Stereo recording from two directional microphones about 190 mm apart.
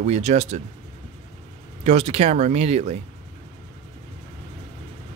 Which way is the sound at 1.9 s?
35° right (ahead or behind).